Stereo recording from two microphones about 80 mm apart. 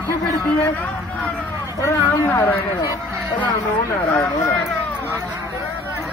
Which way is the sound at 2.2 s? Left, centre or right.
Left.